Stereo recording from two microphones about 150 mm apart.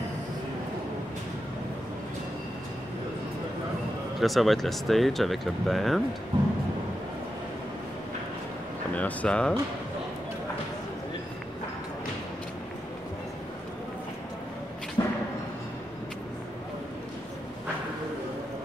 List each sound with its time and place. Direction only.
4.2 s speech: centre (ahead or behind)
8.9 s speech: 10° left (ahead or behind)
15.0 s thump: 25° left (ahead or behind)